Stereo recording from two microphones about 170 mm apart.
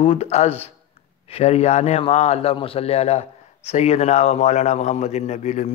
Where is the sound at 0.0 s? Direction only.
35° left (ahead or behind).